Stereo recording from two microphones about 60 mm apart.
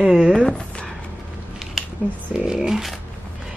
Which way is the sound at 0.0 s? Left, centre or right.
Centre.